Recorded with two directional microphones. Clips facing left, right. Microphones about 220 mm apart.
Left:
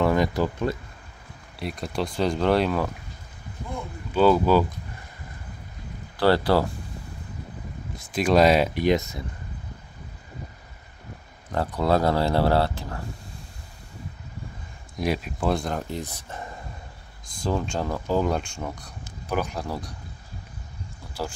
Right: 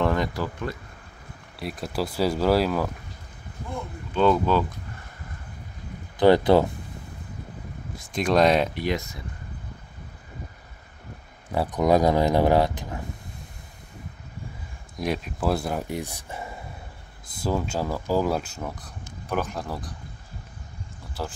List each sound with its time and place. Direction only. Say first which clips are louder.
0.0 s speech: left 3 dB; 10° left (ahead or behind)
1.6 s speech: even; 5° right (ahead or behind)
4.1 s speech: left 2 dB; 5° left (ahead or behind)
6.1 s speech: right 3 dB; 20° right (ahead or behind)
8.1 s speech: left 1 dB; 5° left (ahead or behind)
8.7 s speech: left 5 dB; 20° left (ahead or behind)
11.5 s speech: right 2 dB; 15° right (ahead or behind)
15.0 s speech: left 1 dB; centre (ahead or behind)
21.2 s speech: left 1 dB; centre (ahead or behind)